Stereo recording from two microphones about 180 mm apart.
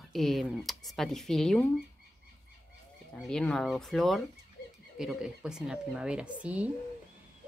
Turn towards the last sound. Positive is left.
turn(degrees=-5)  # may be behind; listen again after turning